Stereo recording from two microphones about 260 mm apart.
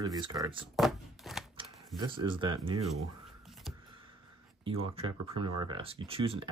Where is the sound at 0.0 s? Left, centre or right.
Centre.